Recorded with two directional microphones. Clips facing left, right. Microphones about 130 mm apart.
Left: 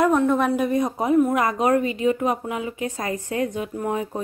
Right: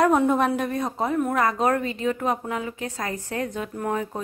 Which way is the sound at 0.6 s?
10° left (ahead or behind).